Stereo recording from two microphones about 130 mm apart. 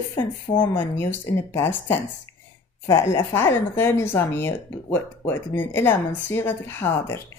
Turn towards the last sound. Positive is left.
turn(degrees=20)  # may be behind; listen again after turning